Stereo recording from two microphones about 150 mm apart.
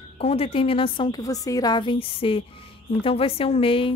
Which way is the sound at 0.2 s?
40° left (ahead or behind).